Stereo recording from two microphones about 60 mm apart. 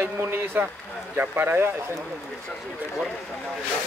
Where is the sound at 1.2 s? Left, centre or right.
Right.